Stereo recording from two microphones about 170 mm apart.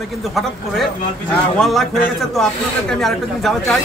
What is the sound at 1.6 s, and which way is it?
Speech, centre (ahead or behind).